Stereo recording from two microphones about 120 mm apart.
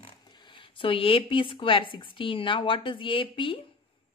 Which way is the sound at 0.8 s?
50° left (ahead or behind).